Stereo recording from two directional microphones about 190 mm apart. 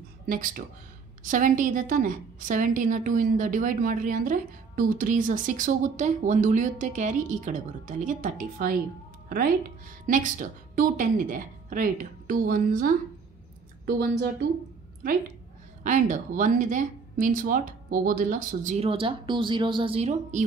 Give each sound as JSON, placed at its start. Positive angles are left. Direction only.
{"t": 0.3, "sound": "a woman's voice", "side_deg": -45}
{"t": 10.0, "sound": "a woman's voice", "side_deg": -45}
{"t": 15.8, "sound": "a woman's voice", "side_deg": -40}
{"t": 18.9, "sound": "speech", "side_deg": -25}